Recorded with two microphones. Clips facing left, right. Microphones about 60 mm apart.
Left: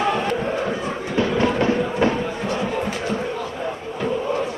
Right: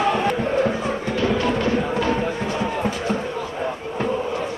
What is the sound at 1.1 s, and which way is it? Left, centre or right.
Music, left.